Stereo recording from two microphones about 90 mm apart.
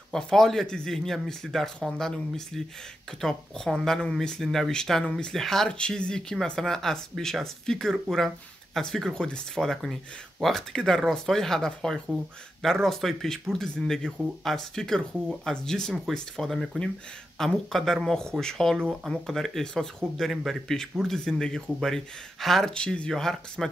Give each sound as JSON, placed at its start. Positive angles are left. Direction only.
{"t": 0.1, "sound": "speech", "side_deg": 5}